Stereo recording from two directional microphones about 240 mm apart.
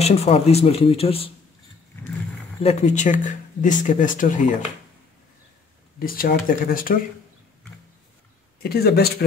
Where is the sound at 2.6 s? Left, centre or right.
Left.